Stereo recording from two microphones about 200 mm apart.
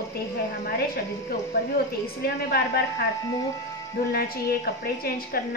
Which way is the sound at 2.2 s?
50° left (ahead or behind).